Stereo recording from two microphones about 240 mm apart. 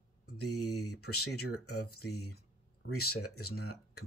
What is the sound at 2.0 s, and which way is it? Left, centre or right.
Speech, left.